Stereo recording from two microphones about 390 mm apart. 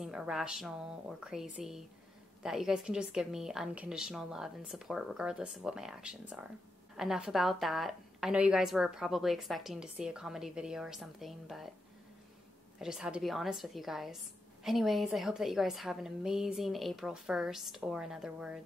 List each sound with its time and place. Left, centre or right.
0.0 s a woman's voice: centre
12.7 s a woman's voice: centre